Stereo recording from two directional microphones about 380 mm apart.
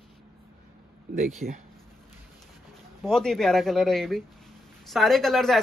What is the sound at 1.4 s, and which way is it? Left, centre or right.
Speech, right.